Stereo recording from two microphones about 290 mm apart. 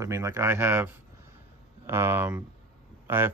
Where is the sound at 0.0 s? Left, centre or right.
Centre.